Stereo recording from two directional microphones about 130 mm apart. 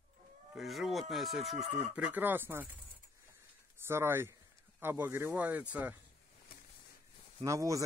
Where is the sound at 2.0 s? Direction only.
10° right (ahead or behind).